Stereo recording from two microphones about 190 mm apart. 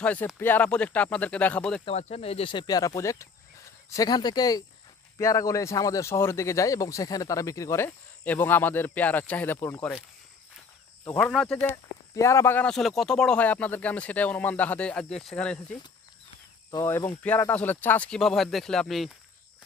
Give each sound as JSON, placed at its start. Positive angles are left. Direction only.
{"t": 0.0, "sound": "a man's voice", "side_deg": 5}
{"t": 1.9, "sound": "a man's voice", "side_deg": 35}
{"t": 11.1, "sound": "a man's voice", "side_deg": 10}
{"t": 16.7, "sound": "a man's voice", "side_deg": 15}